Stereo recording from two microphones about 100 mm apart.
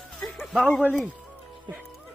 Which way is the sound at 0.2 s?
Centre (ahead or behind).